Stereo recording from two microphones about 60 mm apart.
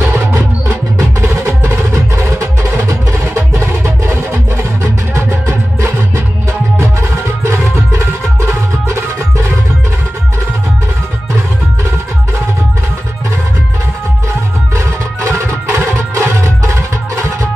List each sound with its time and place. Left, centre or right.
0.3 s music: right
2.3 s music: right
3.6 s music: right
15.2 s music: right